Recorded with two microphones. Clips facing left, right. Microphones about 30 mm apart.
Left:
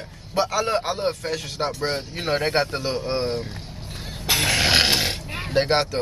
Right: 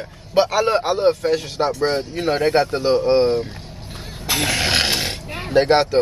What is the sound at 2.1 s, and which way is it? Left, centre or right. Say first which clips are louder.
Speech: right 3 dB; centre.